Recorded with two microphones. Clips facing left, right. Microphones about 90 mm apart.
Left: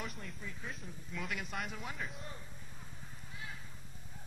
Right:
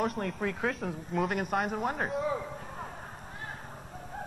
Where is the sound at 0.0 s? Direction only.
55° right (ahead or behind).